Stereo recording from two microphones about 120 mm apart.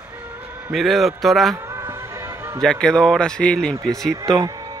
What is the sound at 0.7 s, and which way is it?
Speech, centre (ahead or behind).